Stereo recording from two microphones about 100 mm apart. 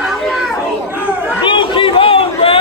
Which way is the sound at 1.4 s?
55° left (ahead or behind).